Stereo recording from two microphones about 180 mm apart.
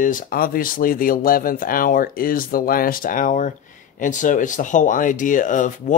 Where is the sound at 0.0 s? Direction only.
50° left (ahead or behind).